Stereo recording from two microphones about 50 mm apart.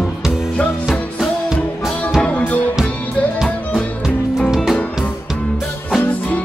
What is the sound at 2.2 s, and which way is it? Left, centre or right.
Music, left.